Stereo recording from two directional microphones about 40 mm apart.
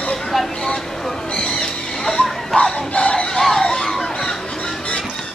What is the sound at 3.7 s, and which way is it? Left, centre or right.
Music, centre.